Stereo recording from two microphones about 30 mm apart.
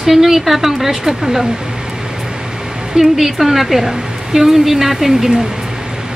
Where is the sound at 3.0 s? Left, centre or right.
Centre.